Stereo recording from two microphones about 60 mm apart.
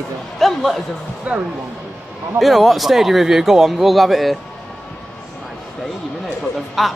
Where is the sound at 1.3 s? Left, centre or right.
Centre.